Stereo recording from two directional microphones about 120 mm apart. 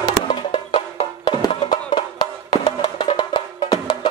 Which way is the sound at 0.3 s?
45° left (ahead or behind).